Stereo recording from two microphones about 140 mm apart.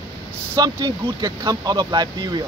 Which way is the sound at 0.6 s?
30° right (ahead or behind).